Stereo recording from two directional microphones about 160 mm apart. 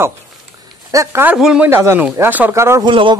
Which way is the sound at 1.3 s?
5° right (ahead or behind).